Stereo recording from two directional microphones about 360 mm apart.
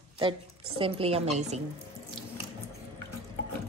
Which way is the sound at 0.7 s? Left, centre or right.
Centre.